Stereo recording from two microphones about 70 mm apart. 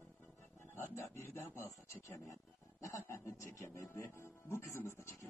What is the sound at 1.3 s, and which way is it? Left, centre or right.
Speech, left.